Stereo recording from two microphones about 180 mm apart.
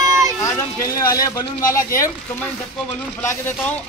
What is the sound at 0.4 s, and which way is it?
Speech, 15° left (ahead or behind).